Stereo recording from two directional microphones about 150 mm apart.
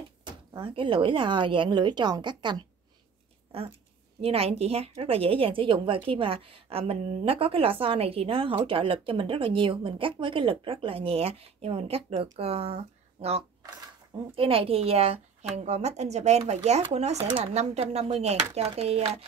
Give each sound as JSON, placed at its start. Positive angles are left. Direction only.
{"t": 0.5, "sound": "a woman's voice", "side_deg": -35}
{"t": 3.5, "sound": "a woman's voice", "side_deg": -40}